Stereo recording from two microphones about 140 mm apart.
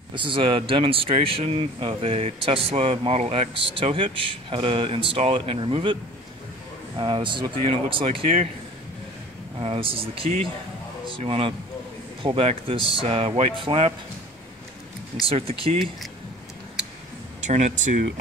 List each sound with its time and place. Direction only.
0.1 s speech: 35° right (ahead or behind)
7.0 s speech: 35° right (ahead or behind)
9.6 s speech: 45° right (ahead or behind)
15.2 s speech: 45° right (ahead or behind)
17.4 s speech: 60° right (ahead or behind)